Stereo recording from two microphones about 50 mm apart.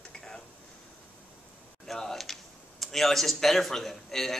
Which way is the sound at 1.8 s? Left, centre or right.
Centre.